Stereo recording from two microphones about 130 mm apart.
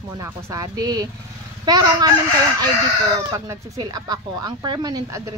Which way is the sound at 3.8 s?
30° right (ahead or behind).